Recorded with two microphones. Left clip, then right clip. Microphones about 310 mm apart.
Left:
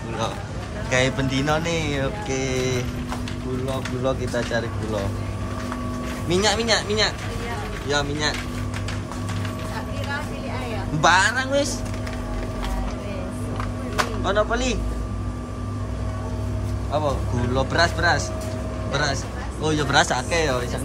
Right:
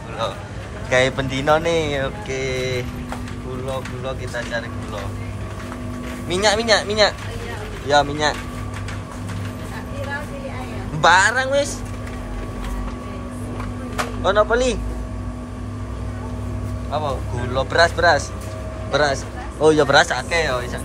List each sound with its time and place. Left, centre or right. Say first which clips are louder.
0.8 s speech: right 4 dB; centre
6.2 s speech: right 3 dB; centre
11.0 s speech: right 4 dB; centre
14.2 s speech: right 8 dB; centre
16.9 s a man's voice: even; centre